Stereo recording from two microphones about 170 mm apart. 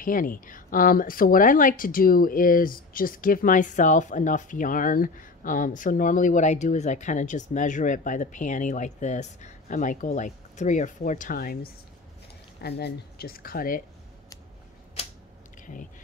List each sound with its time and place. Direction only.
0.0 s speech: 55° left (ahead or behind)
12.6 s speech: 75° left (ahead or behind); by 13.8 s 55° left (ahead or behind)
15.6 s speech: 50° left (ahead or behind)